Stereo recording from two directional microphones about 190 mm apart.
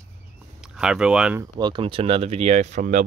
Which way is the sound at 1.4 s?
25° right (ahead or behind).